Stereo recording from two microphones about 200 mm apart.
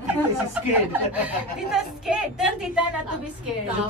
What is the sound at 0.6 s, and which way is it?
A woman's voice, 5° right (ahead or behind).